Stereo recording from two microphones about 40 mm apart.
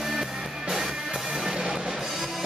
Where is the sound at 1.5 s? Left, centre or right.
Centre.